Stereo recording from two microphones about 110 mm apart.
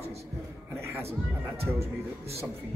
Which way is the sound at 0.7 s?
25° right (ahead or behind).